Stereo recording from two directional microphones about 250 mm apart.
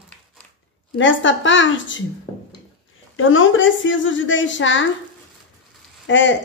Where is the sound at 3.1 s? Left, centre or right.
Left.